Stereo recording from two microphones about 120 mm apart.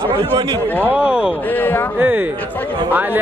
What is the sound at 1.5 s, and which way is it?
Speech, 15° left (ahead or behind).